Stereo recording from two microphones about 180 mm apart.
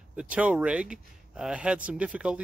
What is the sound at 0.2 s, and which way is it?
Speech, 5° right (ahead or behind).